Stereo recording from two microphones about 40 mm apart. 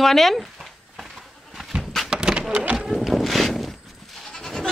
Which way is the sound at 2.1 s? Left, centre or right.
Right.